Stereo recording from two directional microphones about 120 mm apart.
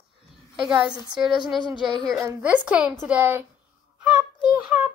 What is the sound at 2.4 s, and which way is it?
A woman's voice, 10° right (ahead or behind).